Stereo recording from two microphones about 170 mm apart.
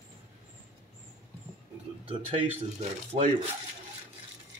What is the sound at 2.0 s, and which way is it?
Speech, 30° right (ahead or behind).